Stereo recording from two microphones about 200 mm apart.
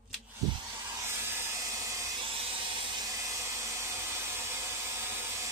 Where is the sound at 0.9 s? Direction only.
15° right (ahead or behind).